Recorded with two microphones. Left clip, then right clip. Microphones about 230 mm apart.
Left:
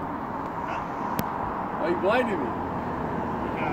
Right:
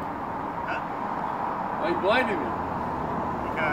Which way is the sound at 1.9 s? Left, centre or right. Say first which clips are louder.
Even; left.